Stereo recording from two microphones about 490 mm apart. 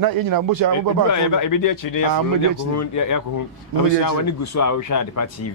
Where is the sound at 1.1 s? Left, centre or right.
Left.